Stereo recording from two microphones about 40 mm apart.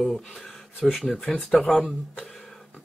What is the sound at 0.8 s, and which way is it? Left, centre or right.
Speech, centre.